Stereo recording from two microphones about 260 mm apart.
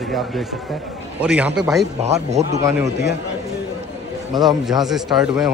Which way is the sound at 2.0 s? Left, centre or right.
Right.